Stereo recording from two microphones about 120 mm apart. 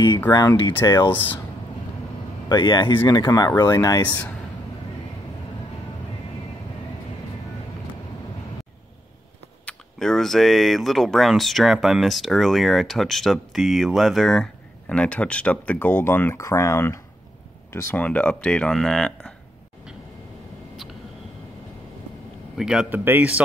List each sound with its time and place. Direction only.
0.3 s speech: 30° left (ahead or behind)
1.1 s speech: 15° left (ahead or behind)
2.5 s speech: 40° left (ahead or behind)
3.3 s speech: 30° left (ahead or behind)
9.7 s speech: 5° left (ahead or behind); by 17.0 s 25° left (ahead or behind)
17.7 s speech: 10° left (ahead or behind)
22.6 s speech: 5° right (ahead or behind)